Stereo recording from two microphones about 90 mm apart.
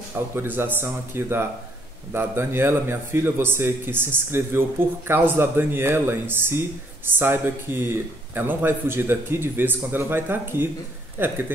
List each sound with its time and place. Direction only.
0.4 s a man's voice: 25° right (ahead or behind)